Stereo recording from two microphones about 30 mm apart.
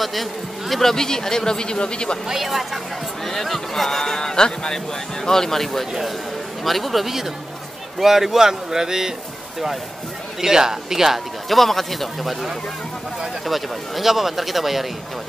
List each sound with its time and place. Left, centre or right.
0.0 s speech: centre
0.8 s a man's voice: centre
2.2 s a man's voice: centre
3.3 s a man's voice: centre
10.4 s a man's voice: centre
11.4 s speech: centre
13.5 s speech: centre